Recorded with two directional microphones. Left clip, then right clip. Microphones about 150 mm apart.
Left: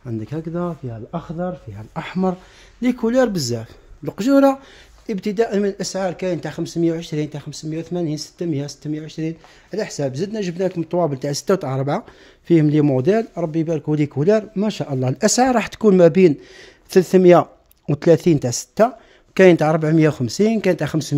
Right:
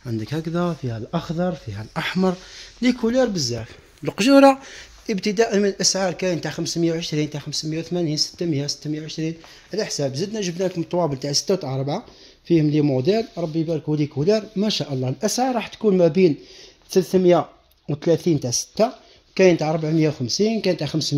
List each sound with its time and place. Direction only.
0.0 s speech: 10° right (ahead or behind); by 1.2 s 25° right (ahead or behind)
2.0 s speech: centre (ahead or behind)
2.8 s speech: 10° left (ahead or behind)
3.1 s speech: 25° left (ahead or behind)
15.0 s speech: 35° left (ahead or behind)
15.2 s speech: 50° left (ahead or behind)
16.0 s speech: 25° left (ahead or behind)
16.9 s speech: 35° left (ahead or behind)
18.4 s speech: 60° left (ahead or behind)
19.3 s speech: 35° left (ahead or behind)
20.2 s speech: 65° left (ahead or behind)
20.6 s speech: 50° left (ahead or behind)